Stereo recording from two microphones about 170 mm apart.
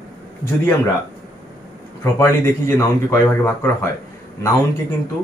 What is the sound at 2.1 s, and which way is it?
A man's voice, 15° left (ahead or behind).